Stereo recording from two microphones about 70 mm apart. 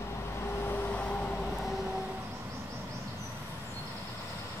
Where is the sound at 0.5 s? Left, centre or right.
Left.